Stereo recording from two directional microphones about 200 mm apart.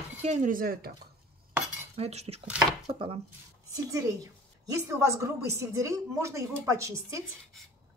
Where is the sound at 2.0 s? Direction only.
30° right (ahead or behind).